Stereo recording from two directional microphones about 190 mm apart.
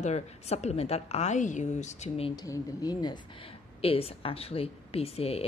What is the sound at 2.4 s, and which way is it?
Speech, 20° left (ahead or behind).